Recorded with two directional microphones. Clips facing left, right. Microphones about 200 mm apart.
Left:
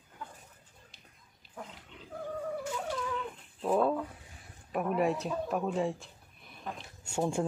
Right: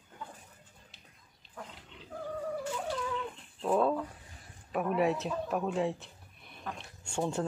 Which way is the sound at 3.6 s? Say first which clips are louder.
Even; 5° left (ahead or behind).